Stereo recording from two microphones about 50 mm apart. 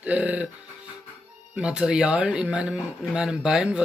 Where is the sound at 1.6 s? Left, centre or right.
Centre.